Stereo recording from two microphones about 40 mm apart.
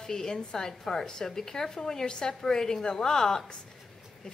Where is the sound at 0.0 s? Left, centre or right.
Centre.